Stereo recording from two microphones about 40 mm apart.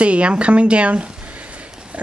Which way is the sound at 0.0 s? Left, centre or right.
Right.